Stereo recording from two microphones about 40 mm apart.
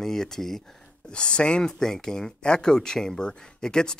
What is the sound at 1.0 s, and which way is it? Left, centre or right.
Speech, left.